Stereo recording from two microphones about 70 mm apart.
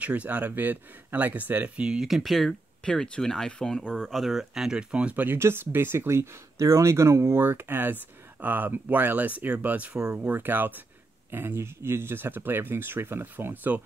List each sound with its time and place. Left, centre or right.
0.0 s speech: right